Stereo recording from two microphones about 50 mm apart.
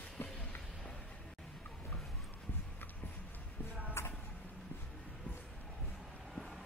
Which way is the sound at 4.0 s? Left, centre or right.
Left.